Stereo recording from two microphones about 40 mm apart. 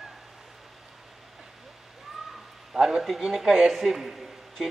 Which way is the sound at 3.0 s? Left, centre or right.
Centre.